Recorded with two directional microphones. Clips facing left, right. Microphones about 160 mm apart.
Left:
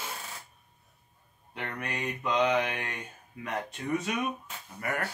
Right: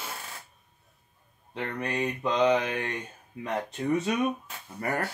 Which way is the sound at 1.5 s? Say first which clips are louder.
Right 5 dB; 30° right (ahead or behind).